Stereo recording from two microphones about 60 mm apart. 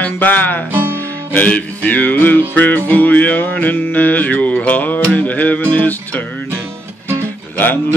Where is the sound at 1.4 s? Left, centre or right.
Left.